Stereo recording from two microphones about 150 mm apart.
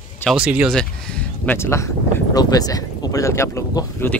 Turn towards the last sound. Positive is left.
turn(degrees=15)  # may be behind; listen again after turning